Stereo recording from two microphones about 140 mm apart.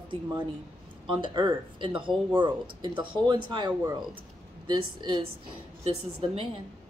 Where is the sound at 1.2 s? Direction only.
35° right (ahead or behind).